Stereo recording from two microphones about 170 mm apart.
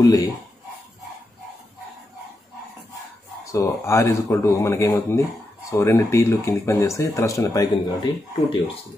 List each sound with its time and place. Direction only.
0.0 s speech: 20° left (ahead or behind)
3.5 s speech: 15° left (ahead or behind)